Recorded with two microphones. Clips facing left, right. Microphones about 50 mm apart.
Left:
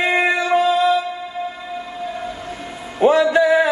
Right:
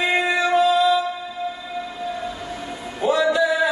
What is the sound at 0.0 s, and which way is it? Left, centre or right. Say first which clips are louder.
Music: left 2 dB; left.